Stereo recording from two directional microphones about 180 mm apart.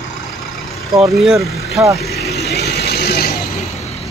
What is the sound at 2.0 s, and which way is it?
Vehicle, 60° left (ahead or behind).